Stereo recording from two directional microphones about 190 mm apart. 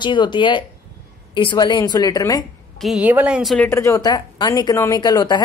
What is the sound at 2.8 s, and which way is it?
A woman's voice, 5° right (ahead or behind).